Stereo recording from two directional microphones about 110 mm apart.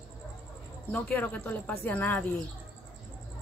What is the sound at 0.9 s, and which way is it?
A woman's voice, 15° left (ahead or behind).